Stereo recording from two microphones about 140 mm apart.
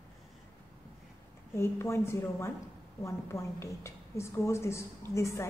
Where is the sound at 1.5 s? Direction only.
20° left (ahead or behind).